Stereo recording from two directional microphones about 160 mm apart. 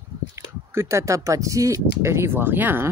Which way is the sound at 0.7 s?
15° right (ahead or behind).